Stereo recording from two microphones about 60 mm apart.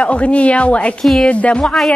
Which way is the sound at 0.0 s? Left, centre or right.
Left.